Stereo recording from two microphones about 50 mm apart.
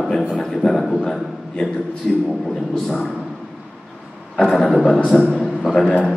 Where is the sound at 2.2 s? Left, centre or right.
Centre.